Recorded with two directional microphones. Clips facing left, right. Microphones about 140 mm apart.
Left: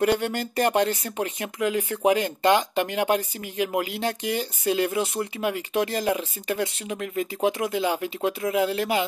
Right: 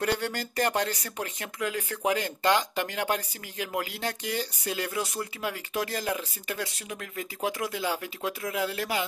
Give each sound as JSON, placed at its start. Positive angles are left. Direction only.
{"t": 0.0, "sound": "speech", "side_deg": 20}